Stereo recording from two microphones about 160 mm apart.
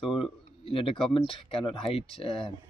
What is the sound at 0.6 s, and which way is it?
Speech, 35° left (ahead or behind).